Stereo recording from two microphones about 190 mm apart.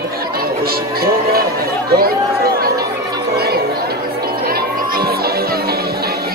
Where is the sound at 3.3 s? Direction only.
55° right (ahead or behind).